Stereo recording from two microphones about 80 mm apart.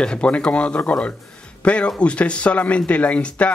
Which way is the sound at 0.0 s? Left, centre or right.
Centre.